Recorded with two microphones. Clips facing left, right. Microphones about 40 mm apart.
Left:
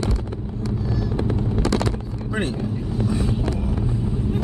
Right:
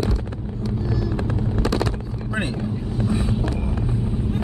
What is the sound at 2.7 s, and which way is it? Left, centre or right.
Vehicle, centre.